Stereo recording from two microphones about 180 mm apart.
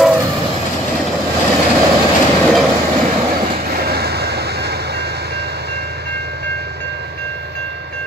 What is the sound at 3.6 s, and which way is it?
Train, 60° right (ahead or behind).